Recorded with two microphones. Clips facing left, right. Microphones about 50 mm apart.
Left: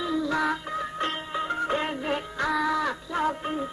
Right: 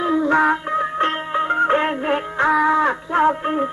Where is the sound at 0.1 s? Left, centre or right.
Right.